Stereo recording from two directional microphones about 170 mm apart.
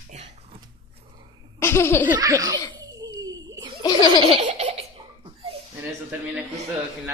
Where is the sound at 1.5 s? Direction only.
15° left (ahead or behind).